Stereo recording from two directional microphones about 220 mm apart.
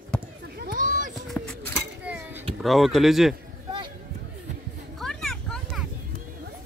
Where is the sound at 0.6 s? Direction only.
40° right (ahead or behind).